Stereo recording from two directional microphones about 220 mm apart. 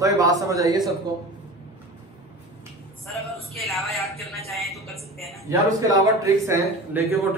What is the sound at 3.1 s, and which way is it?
A man's voice, centre (ahead or behind).